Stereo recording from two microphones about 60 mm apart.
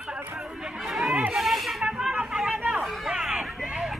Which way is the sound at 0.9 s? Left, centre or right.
Centre.